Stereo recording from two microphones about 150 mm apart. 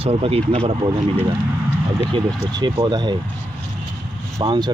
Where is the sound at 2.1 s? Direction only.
35° right (ahead or behind).